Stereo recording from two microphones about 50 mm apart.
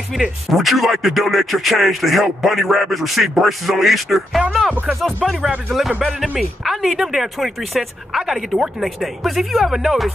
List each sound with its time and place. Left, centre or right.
0.1 s speech: centre
4.4 s speech: right
5.2 s speech: centre